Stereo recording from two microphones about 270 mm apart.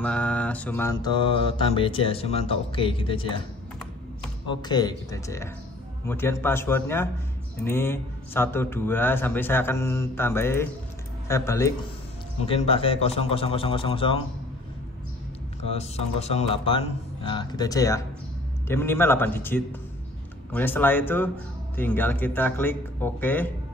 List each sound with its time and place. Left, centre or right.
0.0 s mantra: centre
4.5 s a man's voice: centre
12.4 s mantra: left
15.7 s mantra: left
18.7 s a man's voice: centre